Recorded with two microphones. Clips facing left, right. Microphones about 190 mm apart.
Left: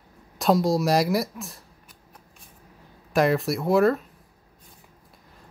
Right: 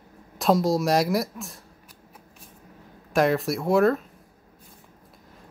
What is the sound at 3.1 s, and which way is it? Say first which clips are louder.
Speech: even; centre (ahead or behind).